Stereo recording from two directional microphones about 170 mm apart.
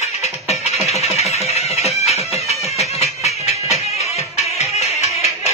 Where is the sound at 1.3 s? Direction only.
40° left (ahead or behind).